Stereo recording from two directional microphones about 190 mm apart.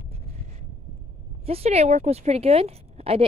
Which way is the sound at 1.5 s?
35° right (ahead or behind).